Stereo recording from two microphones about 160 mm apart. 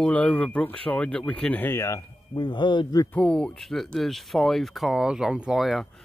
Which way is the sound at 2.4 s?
30° left (ahead or behind).